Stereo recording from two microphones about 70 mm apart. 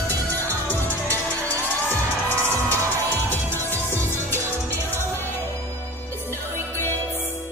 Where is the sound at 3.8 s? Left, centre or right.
Left.